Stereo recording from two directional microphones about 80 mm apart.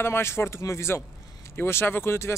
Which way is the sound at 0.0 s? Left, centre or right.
Left.